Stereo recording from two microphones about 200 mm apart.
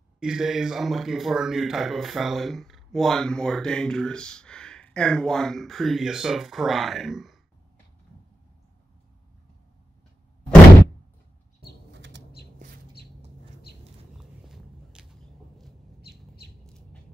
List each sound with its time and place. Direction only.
0.2 s speech: centre (ahead or behind)
11.9 s bird flight: 60° right (ahead or behind)
14.5 s a sound: 5° right (ahead or behind)